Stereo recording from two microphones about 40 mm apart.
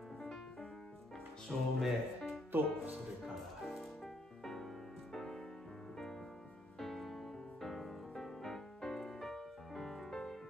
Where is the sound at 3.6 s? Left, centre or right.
Centre.